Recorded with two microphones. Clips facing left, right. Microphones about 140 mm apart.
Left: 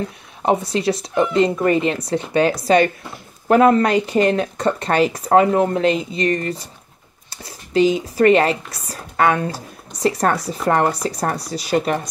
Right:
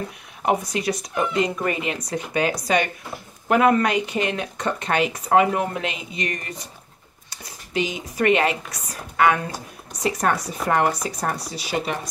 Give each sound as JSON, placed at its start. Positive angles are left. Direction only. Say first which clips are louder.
{"t": 0.5, "sound": "speech", "louder": "left 4 dB", "side_deg": 30}